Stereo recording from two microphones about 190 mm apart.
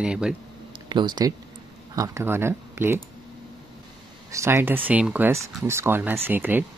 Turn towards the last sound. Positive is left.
turn(degrees=-10)  # may be behind; listen again after turning